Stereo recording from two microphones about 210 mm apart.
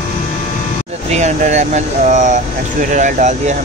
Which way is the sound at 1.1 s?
35° right (ahead or behind).